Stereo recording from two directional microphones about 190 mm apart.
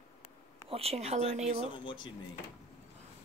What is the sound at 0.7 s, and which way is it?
Speech, 30° right (ahead or behind).